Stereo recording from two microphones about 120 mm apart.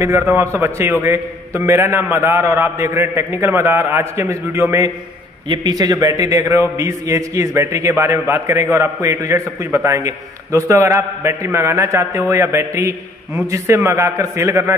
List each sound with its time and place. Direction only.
0.0 s a man's voice: 20° right (ahead or behind)
5.5 s a man's voice: 35° right (ahead or behind)